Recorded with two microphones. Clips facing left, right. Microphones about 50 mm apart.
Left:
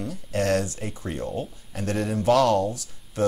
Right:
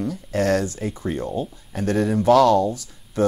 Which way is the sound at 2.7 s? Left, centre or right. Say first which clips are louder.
Right 5 dB; right.